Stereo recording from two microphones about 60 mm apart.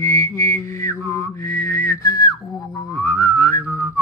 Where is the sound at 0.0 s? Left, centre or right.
Left.